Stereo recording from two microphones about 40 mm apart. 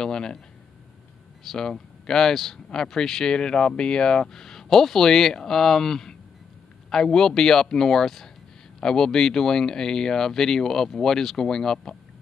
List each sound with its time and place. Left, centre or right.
0.0 s speech: centre
1.4 s speech: centre